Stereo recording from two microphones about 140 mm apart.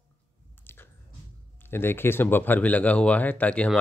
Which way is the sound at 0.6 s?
15° left (ahead or behind).